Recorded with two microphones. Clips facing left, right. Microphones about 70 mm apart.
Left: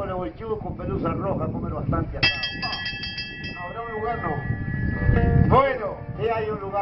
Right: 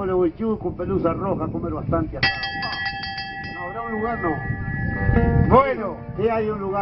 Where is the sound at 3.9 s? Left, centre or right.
Right.